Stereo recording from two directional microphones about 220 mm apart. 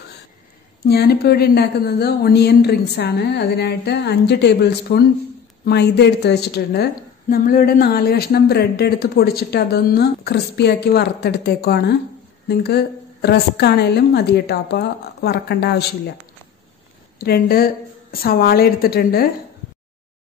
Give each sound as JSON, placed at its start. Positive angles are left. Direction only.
{"t": 0.8, "sound": "a woman's voice", "side_deg": 45}
{"t": 17.2, "sound": "a woman's voice", "side_deg": 45}